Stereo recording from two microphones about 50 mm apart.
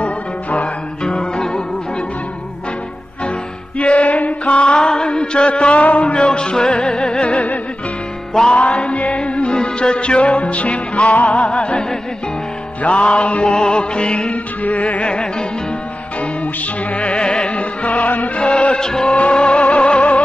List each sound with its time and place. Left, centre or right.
0.0 s music: left
1.0 s music: centre
3.7 s music: left
8.5 s music: left
12.8 s music: left
16.9 s music: left
18.4 s music: left
19.1 s music: left